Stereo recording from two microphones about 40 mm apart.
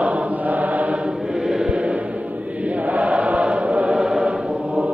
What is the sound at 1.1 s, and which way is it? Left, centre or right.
Chant, centre.